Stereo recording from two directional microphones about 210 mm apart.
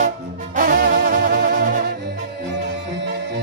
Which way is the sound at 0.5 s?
40° right (ahead or behind).